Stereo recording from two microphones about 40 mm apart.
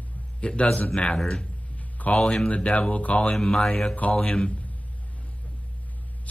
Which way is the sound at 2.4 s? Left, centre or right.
Left.